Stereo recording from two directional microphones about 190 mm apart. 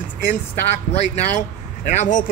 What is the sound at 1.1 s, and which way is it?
Speech, 40° left (ahead or behind).